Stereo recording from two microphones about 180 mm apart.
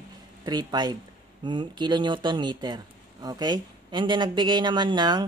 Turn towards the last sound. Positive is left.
turn(degrees=-25)  # may be behind; listen again after turning